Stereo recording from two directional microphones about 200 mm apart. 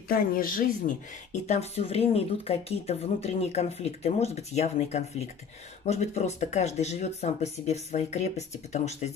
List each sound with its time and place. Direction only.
0.1 s speech: 45° left (ahead or behind)